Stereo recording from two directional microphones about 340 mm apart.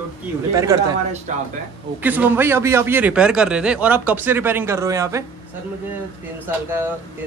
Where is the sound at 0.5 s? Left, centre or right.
Centre.